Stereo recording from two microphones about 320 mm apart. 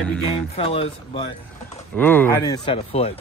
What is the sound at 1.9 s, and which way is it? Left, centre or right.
Speech, centre.